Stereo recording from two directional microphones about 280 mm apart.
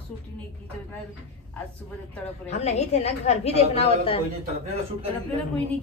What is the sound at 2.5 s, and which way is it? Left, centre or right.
A woman's voice, left.